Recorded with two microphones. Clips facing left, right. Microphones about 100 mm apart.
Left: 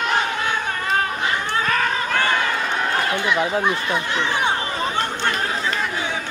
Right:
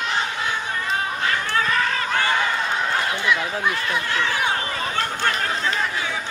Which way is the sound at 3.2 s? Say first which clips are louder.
Left 3 dB; 20° left (ahead or behind).